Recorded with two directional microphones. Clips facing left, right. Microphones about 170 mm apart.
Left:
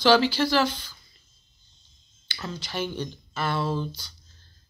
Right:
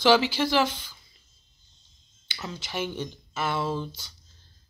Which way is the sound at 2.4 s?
15° right (ahead or behind).